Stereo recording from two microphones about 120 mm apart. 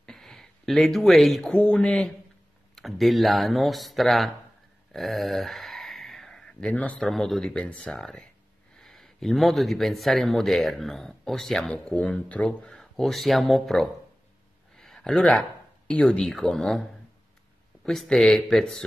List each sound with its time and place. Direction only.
0.0 s speech: 5° left (ahead or behind)
4.9 s a sound: centre (ahead or behind)
7.1 s speech: 5° left (ahead or behind)
14.8 s a sound: 5° left (ahead or behind)
15.9 s speech: 10° left (ahead or behind)
17.8 s speech: centre (ahead or behind)